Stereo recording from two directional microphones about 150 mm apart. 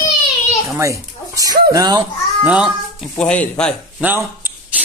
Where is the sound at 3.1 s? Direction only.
5° left (ahead or behind).